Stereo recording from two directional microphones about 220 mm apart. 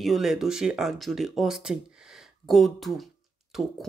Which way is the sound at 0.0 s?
Centre (ahead or behind).